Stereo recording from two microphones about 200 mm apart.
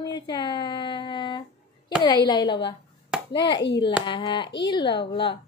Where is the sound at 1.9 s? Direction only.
20° left (ahead or behind).